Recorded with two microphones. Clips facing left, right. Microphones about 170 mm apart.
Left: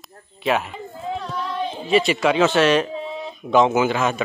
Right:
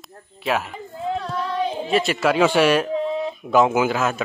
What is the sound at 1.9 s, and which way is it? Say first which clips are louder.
A man's voice: left 3 dB; centre (ahead or behind).